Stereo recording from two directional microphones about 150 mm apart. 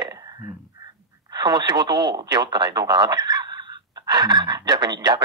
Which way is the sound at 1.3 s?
30° right (ahead or behind).